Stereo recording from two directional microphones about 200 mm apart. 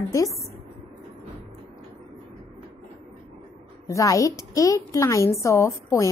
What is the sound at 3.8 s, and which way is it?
A woman's voice, 15° left (ahead or behind).